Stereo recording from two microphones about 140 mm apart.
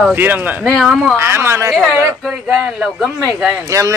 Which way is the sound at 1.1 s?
20° right (ahead or behind).